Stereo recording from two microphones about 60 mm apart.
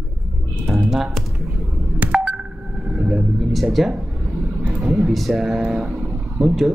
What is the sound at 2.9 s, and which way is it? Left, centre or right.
Vehicle, centre.